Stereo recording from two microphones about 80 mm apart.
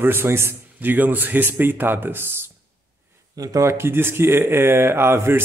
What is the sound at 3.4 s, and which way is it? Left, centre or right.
Speech, right.